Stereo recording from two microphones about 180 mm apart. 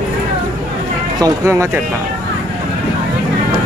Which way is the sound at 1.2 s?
15° right (ahead or behind).